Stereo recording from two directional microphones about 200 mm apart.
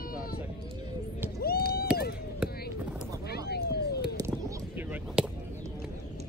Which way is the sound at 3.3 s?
55° left (ahead or behind).